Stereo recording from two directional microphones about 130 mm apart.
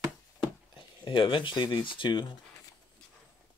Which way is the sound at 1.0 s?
40° left (ahead or behind).